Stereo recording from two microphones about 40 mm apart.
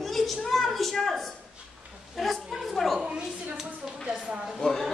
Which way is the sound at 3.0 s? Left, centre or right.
Centre.